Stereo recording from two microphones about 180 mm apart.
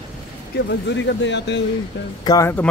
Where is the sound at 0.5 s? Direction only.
90° left.